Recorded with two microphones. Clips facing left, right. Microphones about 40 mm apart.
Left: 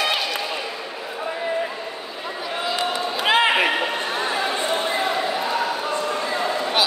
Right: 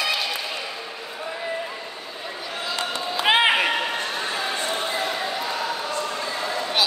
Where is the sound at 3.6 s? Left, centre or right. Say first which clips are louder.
Left 2 dB; centre.